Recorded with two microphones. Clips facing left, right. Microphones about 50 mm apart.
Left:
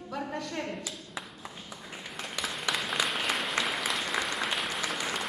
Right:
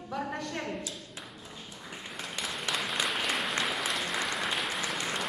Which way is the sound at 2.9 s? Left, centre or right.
Centre.